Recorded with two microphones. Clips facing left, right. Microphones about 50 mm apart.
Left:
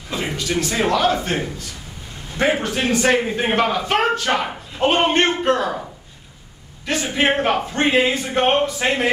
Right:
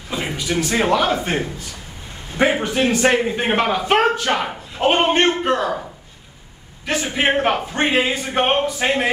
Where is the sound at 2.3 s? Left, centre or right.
Centre.